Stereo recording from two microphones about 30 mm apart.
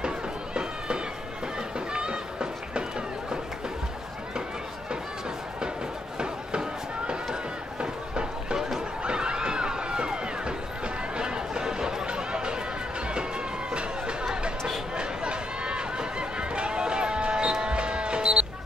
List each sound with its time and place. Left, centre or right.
0.6 s cat: right
1.9 s a sound: right
6.1 s chop: right
7.8 s run: right
9.0 s crowd: right
11.1 s chatter: right
15.0 s run: right
17.5 s music: right